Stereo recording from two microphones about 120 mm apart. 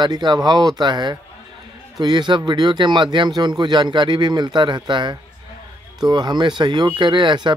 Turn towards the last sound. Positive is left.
turn(degrees=-40)  # may be behind; listen again after turning